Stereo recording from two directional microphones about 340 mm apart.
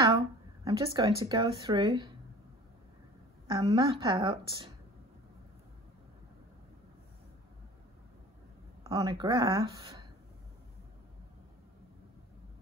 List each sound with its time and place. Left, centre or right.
0.7 s speech: centre
3.4 s speech: centre
8.8 s speech: centre